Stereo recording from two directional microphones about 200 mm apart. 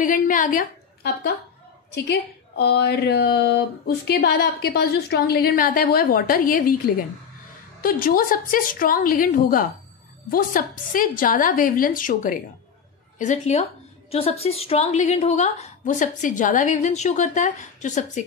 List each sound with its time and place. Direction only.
0.0 s a woman's voice: 40° left (ahead or behind)